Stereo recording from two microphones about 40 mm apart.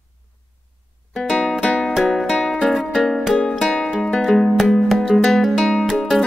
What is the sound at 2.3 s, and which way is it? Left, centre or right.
Music, centre.